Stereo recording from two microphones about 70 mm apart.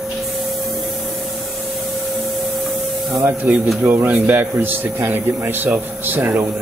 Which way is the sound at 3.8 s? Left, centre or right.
Right.